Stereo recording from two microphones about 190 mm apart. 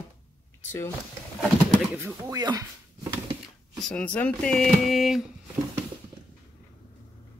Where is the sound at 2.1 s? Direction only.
20° right (ahead or behind).